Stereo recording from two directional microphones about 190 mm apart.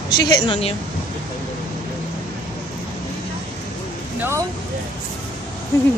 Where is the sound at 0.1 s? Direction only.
25° left (ahead or behind).